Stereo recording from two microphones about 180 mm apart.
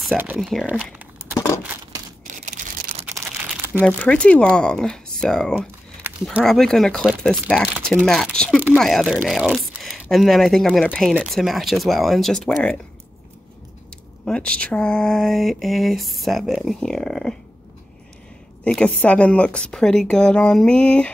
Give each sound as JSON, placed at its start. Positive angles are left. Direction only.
{"t": 0.2, "sound": "speech", "side_deg": -5}
{"t": 2.2, "sound": "a sound", "side_deg": -45}
{"t": 3.8, "sound": "speech", "side_deg": 5}
{"t": 6.0, "sound": "a sound", "side_deg": -10}
{"t": 6.4, "sound": "speech", "side_deg": 0}
{"t": 14.2, "sound": "speech", "side_deg": 5}
{"t": 18.6, "sound": "speech", "side_deg": 5}